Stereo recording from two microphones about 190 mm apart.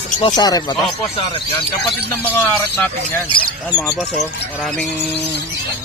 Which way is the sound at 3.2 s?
25° left (ahead or behind).